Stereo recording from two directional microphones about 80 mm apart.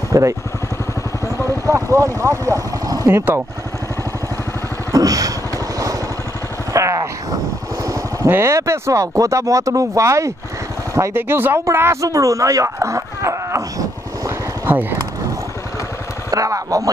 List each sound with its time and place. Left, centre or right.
0.1 s speech: right
1.7 s speech: right
3.1 s speech: right
4.9 s vehicle: right
6.7 s a sound: right
7.8 s vehicle: right
8.3 s speech: right
11.1 s speech: right
12.0 s a sound: right
14.7 s speech: right
16.3 s a sound: right